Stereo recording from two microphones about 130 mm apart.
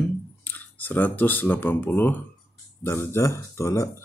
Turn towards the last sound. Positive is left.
turn(degrees=20)  # may be behind; listen again after turning